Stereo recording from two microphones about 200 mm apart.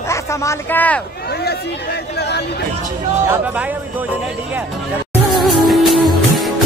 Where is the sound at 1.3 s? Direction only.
55° left (ahead or behind).